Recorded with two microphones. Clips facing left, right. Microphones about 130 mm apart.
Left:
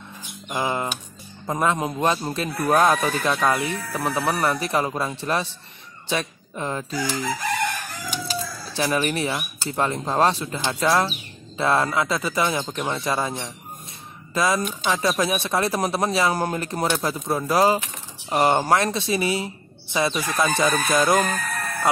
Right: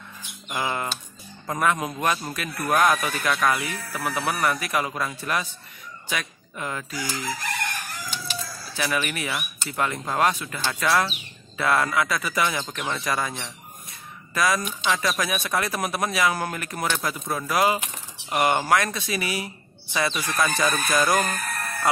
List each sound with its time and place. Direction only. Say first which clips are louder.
0.5 s speech: left 3 dB; 20° left (ahead or behind)
8.3 s speech: left 5 dB; 35° left (ahead or behind)